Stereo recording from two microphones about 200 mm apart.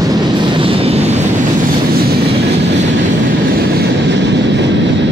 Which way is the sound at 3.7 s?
60° right (ahead or behind).